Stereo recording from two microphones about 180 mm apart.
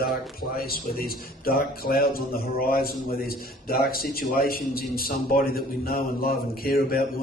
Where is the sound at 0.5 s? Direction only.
55° left (ahead or behind).